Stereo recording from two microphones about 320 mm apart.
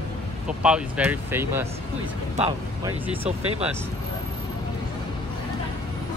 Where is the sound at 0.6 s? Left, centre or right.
Centre.